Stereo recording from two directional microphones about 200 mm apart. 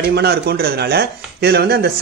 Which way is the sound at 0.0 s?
50° right (ahead or behind).